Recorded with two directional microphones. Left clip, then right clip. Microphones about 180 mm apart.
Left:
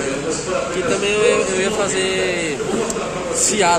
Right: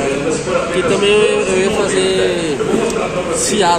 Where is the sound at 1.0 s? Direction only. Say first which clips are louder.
Right 3 dB; 40° right (ahead or behind).